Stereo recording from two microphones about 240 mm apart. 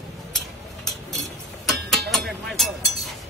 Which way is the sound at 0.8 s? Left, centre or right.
Centre.